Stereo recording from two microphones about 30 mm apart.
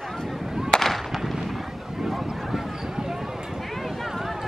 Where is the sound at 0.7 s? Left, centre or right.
Centre.